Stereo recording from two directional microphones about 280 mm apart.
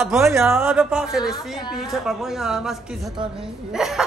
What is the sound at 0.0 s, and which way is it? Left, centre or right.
Speech, centre.